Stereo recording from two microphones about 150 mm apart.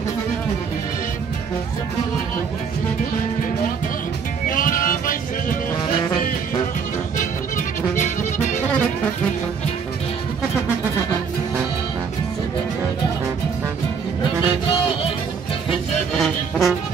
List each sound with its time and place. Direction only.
4.5 s sheep: 65° left (ahead or behind)
7.2 s music: 60° left (ahead or behind)
14.2 s music: 40° left (ahead or behind)
16.1 s music: centre (ahead or behind)